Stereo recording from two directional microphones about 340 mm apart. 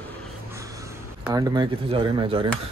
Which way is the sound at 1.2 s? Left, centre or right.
Centre.